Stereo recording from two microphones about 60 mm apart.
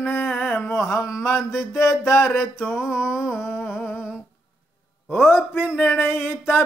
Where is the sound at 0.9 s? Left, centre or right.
Left.